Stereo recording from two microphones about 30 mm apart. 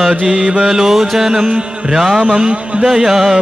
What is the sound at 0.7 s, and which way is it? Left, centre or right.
Mantra, centre.